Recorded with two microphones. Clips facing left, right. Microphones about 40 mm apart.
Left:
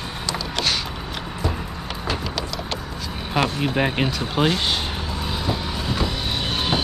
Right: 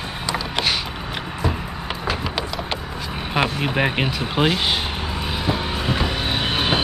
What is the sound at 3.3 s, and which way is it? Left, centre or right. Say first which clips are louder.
Speech: even; centre.